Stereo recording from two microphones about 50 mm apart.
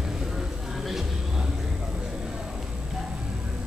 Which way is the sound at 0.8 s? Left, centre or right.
Centre.